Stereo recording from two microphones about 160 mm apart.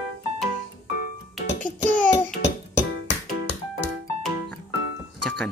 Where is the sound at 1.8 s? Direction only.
15° left (ahead or behind).